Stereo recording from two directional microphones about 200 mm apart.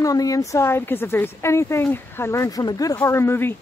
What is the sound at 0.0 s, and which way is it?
Speech, 15° left (ahead or behind).